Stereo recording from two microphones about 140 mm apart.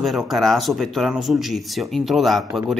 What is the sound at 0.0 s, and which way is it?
Speech, centre (ahead or behind).